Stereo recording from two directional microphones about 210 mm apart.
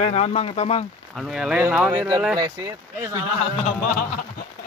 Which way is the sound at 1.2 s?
Centre (ahead or behind).